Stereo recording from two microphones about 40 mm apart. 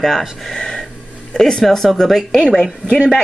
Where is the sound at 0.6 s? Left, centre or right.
Centre.